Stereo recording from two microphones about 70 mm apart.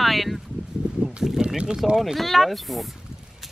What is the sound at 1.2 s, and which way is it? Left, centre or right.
Boat, centre.